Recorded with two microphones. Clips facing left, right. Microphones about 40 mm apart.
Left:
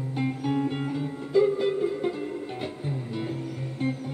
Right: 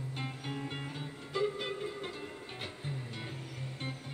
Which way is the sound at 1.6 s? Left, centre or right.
Centre.